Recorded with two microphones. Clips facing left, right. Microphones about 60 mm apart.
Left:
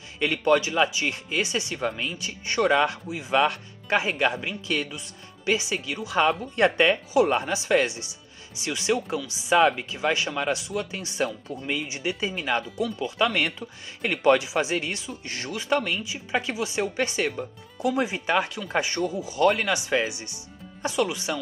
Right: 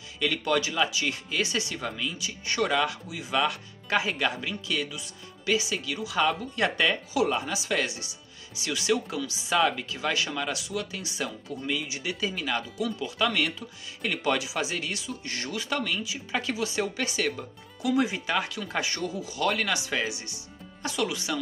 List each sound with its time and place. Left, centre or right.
0.2 s speech: left
2.0 s speech: left
2.4 s speech: left